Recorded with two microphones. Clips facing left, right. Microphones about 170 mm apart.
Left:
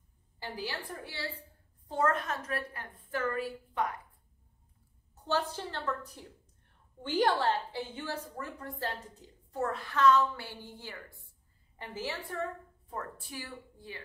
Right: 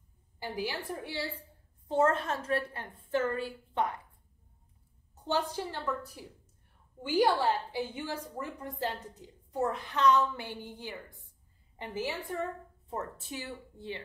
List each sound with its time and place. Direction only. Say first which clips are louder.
0.4 s a woman's voice: right 3 dB; 10° right (ahead or behind)
1.9 s a woman's voice: right 3 dB; 25° right (ahead or behind)
5.2 s a woman's voice: right 1 dB; 15° right (ahead or behind)